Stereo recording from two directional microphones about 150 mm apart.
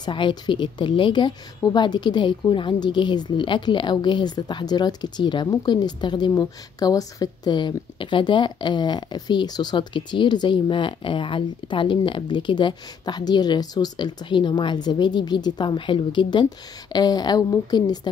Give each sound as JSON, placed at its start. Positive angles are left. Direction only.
{"t": 0.0, "sound": "a woman's voice", "side_deg": 30}